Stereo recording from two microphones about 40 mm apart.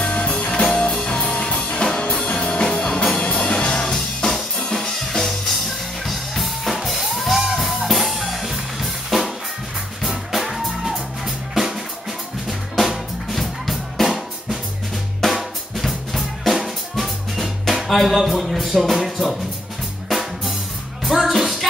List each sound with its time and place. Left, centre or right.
0.0 s music: left
0.5 s music: centre
15.2 s drum: centre
20.1 s drum kit: centre
21.0 s music: centre